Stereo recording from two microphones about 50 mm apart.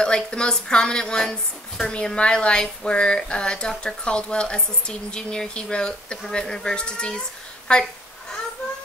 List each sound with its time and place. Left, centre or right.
0.0 s speech: centre